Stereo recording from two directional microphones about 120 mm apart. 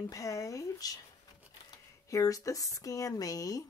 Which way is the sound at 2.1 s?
30° left (ahead or behind).